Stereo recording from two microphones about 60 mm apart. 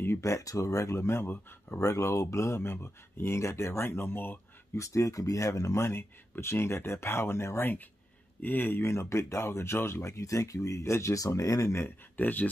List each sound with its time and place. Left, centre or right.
0.2 s speech: left
1.2 s speech: left
1.8 s speech: left
4.7 s speech: left
5.8 s speech: left
8.4 s speech: left
8.9 s speech: left
10.0 s speech: left
10.8 s speech: left
11.8 s speech: left